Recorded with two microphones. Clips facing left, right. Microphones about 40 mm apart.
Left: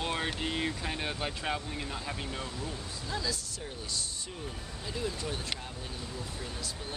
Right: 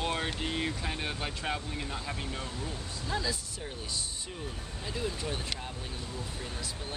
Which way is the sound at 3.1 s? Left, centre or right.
Centre.